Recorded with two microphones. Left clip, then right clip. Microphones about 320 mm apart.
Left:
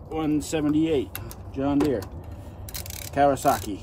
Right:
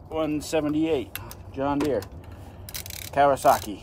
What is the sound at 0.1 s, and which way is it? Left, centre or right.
Speech, centre.